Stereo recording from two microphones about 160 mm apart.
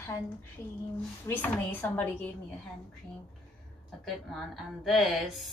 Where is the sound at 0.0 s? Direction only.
15° left (ahead or behind).